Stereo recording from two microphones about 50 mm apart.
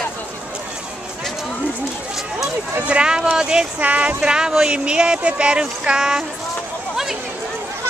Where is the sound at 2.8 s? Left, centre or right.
Centre.